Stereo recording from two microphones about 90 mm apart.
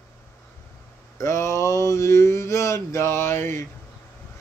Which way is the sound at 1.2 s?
30° left (ahead or behind).